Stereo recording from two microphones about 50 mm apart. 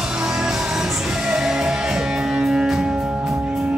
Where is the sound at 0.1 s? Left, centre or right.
Centre.